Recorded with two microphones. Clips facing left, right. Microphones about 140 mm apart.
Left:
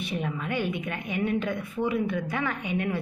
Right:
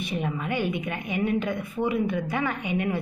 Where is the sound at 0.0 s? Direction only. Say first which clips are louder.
Right 2 dB; 10° right (ahead or behind).